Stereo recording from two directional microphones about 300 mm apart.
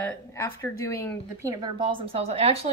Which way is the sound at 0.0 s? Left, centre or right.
Centre.